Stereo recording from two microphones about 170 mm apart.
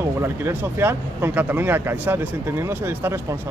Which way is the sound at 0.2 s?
15° right (ahead or behind).